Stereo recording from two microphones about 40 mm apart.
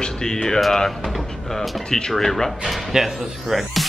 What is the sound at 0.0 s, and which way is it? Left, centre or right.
Speech, centre.